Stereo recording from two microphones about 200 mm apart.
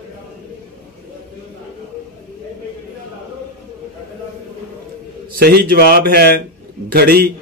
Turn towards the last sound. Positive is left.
turn(degrees=-50)  # may be behind; listen again after turning